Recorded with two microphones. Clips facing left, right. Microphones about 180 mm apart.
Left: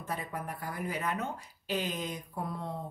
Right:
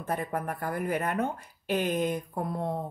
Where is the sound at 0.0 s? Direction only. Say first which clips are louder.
Right 6 dB; 55° right (ahead or behind).